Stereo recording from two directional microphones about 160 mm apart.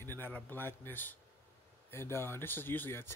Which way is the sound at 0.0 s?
15° left (ahead or behind).